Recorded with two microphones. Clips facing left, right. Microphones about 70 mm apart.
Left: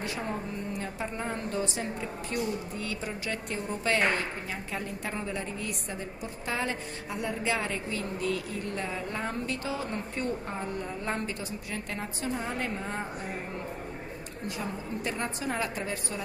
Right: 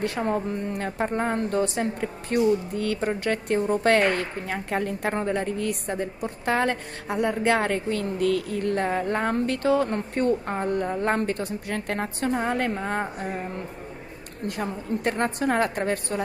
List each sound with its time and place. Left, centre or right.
0.0 s a woman's voice: right
14.6 s a woman's voice: right